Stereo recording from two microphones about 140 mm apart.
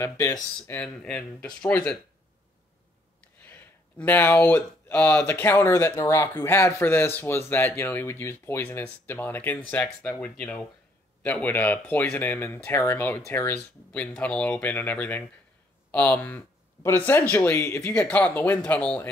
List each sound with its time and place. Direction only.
0.0 s speech: 20° left (ahead or behind)
1.0 s speech: 5° left (ahead or behind)
3.4 s speech: 15° left (ahead or behind)